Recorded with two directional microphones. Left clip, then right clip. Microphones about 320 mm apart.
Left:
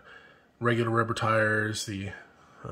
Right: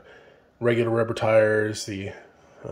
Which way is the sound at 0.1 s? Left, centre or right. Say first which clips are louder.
Right 1 dB; left.